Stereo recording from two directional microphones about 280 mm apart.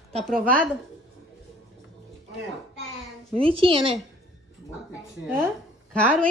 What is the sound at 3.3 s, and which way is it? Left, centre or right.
Speech, centre.